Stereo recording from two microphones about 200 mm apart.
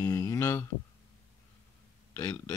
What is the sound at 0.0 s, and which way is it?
Music, 20° left (ahead or behind).